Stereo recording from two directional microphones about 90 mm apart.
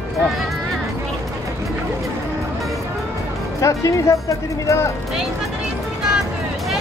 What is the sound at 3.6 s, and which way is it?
Speech, 35° left (ahead or behind).